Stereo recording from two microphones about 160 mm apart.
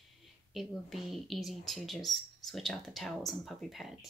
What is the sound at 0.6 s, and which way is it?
Speech, centre (ahead or behind).